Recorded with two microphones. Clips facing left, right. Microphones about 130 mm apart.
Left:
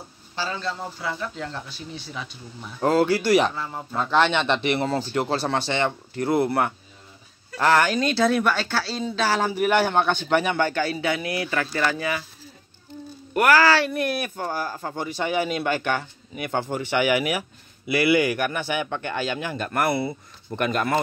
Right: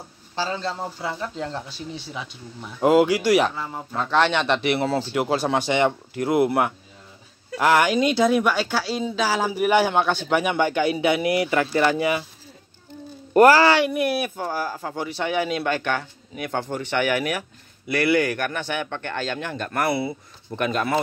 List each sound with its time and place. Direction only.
0.4 s a man's voice: 30° right (ahead or behind)
2.8 s speech: 15° right (ahead or behind)
13.3 s speech: 30° right (ahead or behind); by 21.0 s centre (ahead or behind)